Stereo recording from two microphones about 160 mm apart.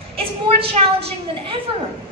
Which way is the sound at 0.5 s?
35° right (ahead or behind).